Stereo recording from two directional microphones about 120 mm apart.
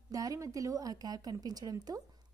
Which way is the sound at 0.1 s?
30° right (ahead or behind).